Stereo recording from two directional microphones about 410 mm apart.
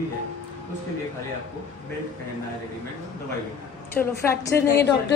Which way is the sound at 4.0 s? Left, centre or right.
Centre.